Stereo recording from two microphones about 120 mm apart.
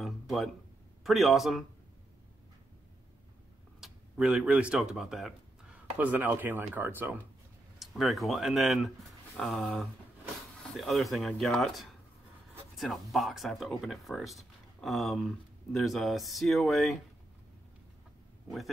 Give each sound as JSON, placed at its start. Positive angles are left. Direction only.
{"t": 0.0, "sound": "a sound", "side_deg": 0}
{"t": 1.0, "sound": "speech", "side_deg": 0}
{"t": 3.8, "sound": "speech", "side_deg": -5}
{"t": 7.8, "sound": "speech", "side_deg": 0}